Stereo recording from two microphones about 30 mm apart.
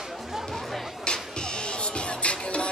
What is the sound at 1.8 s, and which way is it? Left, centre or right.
Music, left.